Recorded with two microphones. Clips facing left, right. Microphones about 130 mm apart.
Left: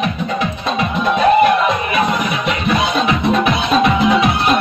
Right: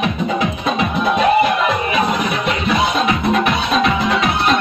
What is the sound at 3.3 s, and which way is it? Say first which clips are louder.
Music: left 2 dB; 10° left (ahead or behind).